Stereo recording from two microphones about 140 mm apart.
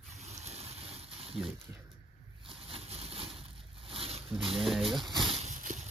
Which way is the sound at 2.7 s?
45° right (ahead or behind).